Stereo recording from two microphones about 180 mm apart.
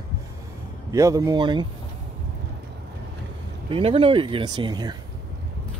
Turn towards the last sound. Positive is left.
turn(degrees=-25)  # may be behind; listen again after turning